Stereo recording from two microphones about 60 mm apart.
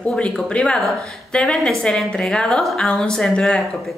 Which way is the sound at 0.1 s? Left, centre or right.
Centre.